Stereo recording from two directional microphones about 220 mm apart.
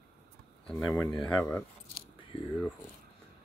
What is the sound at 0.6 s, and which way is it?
Speech, 10° left (ahead or behind).